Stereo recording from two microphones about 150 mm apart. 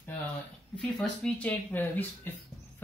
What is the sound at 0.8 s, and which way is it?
Speech, 5° left (ahead or behind).